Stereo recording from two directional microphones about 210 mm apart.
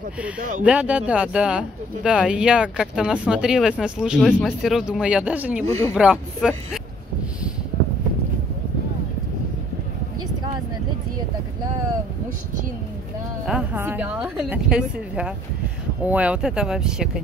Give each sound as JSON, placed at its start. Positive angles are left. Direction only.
{"t": 0.4, "sound": "speech", "side_deg": -40}
{"t": 0.7, "sound": "speech", "side_deg": -5}
{"t": 13.5, "sound": "speech", "side_deg": -5}